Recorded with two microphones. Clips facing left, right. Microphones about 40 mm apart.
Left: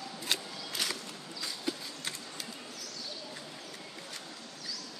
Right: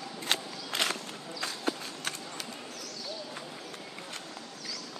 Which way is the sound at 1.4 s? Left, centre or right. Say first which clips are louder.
Right 4 dB; right.